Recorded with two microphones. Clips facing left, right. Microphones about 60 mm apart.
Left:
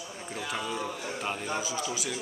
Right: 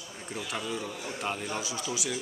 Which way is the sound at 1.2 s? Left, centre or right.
Centre.